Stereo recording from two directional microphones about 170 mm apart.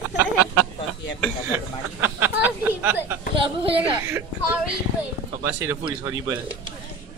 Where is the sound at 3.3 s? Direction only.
30° right (ahead or behind).